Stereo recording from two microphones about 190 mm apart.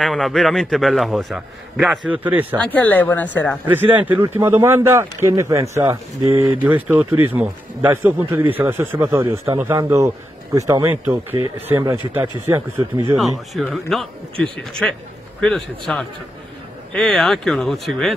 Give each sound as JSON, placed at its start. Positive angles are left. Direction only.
{"t": 0.0, "sound": "a man's voice", "side_deg": 0}
{"t": 2.6, "sound": "speech", "side_deg": 10}
{"t": 3.7, "sound": "a man's voice", "side_deg": -10}
{"t": 13.2, "sound": "a man's voice", "side_deg": 0}